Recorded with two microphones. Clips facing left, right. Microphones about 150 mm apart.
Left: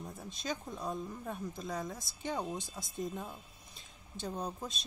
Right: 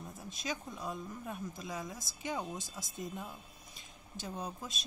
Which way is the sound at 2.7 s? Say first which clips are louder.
Left 3 dB; 25° left (ahead or behind).